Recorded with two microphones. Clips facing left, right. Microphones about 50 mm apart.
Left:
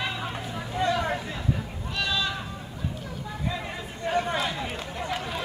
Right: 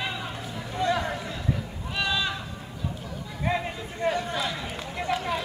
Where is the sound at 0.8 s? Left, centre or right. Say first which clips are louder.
Even; left.